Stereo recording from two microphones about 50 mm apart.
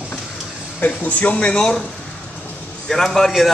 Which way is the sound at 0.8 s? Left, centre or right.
Left.